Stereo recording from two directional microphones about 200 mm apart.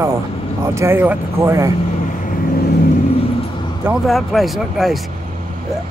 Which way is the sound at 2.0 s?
40° left (ahead or behind).